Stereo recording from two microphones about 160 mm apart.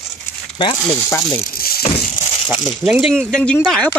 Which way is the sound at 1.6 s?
70° left (ahead or behind).